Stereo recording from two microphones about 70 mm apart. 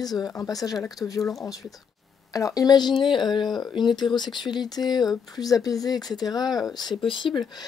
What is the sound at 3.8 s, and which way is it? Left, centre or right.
Speech, left.